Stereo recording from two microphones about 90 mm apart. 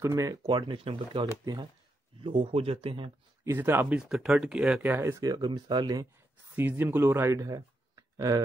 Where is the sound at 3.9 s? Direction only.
10° right (ahead or behind).